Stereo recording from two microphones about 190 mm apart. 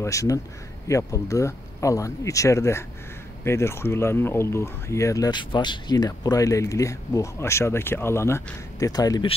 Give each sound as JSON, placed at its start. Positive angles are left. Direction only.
{"t": 0.0, "sound": "speech", "side_deg": 15}